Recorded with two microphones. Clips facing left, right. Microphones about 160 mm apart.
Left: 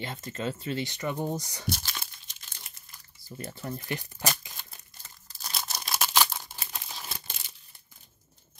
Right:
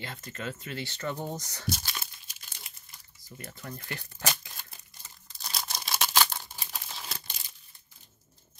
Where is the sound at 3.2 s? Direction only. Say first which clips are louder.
Left 6 dB; 30° left (ahead or behind).